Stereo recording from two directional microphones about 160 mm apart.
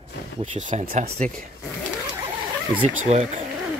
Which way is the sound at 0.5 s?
50° right (ahead or behind).